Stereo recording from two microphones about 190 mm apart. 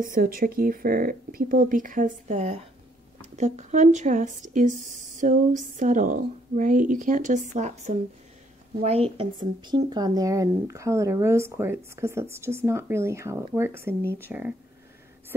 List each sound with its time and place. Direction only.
0.0 s speech: 50° right (ahead or behind); by 14.5 s 10° right (ahead or behind)